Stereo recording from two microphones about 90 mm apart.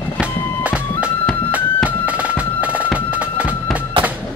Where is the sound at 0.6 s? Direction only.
15° right (ahead or behind).